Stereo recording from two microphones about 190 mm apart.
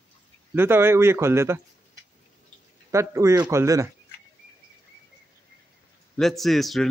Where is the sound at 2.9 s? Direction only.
15° right (ahead or behind).